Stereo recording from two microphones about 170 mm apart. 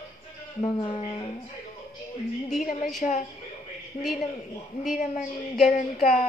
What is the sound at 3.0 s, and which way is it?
Speech, 45° left (ahead or behind).